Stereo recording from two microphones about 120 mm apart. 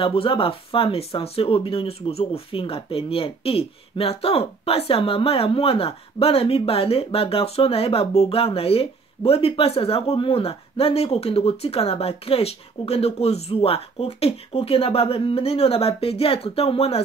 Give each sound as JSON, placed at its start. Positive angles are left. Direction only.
{"t": 0.0, "sound": "speech", "side_deg": 50}